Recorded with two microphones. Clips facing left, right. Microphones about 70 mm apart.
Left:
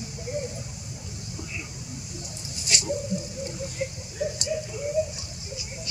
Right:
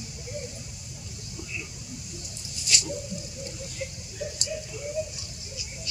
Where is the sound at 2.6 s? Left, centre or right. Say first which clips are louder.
Left 3 dB; left.